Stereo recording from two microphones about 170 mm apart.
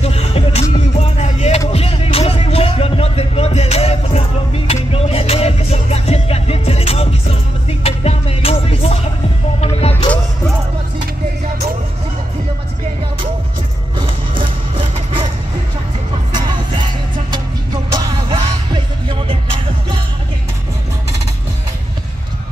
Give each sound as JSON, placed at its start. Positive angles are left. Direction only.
{"t": 0.0, "sound": "music", "side_deg": 35}
{"t": 13.9, "sound": "a sound", "side_deg": -30}
{"t": 16.3, "sound": "music", "side_deg": -25}